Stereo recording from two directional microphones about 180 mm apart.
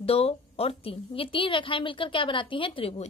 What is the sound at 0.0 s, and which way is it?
A woman's voice, 35° left (ahead or behind).